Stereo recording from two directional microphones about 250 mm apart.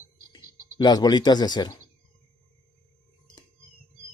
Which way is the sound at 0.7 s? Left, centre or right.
Centre.